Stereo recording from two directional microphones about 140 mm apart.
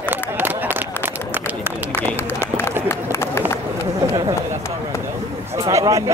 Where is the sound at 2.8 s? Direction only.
20° left (ahead or behind).